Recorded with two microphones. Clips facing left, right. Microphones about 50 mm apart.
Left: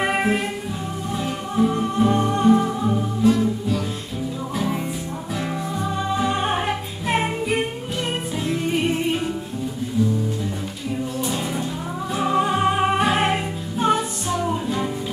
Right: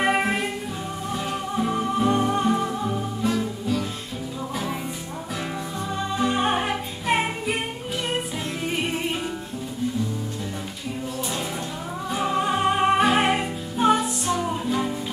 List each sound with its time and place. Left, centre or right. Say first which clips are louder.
0.0 s music: left 1 dB; centre
5.9 s music: even; centre
11.1 s music: left 4 dB; centre